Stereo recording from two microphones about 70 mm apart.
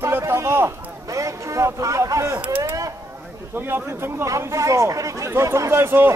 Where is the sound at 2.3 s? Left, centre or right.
Right.